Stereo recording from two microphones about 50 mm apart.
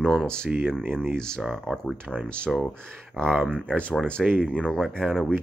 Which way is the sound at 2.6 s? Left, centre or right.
Left.